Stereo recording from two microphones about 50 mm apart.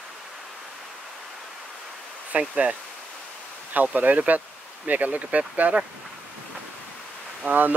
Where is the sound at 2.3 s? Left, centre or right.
Right.